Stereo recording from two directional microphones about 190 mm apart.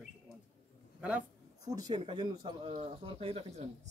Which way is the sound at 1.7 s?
20° right (ahead or behind).